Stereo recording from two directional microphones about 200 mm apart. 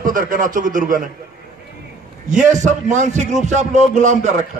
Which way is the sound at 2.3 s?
35° right (ahead or behind).